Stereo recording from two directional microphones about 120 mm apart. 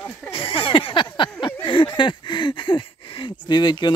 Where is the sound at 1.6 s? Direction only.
45° left (ahead or behind).